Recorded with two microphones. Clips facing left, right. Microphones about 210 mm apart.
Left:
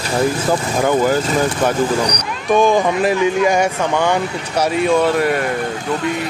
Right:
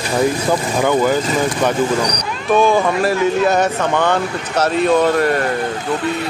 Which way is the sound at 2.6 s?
15° left (ahead or behind).